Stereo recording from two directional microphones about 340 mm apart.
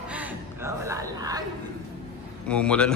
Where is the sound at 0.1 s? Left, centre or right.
Centre.